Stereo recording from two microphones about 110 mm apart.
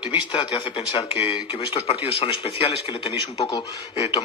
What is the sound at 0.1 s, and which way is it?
Speech, 45° left (ahead or behind).